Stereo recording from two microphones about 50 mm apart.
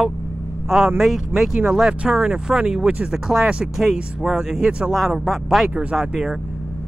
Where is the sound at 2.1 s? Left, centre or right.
Right.